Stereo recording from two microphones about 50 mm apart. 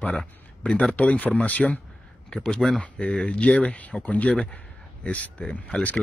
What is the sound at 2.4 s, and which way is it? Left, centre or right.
Speech, centre.